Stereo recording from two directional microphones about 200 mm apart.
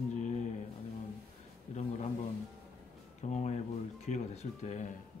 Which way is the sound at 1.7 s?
35° left (ahead or behind).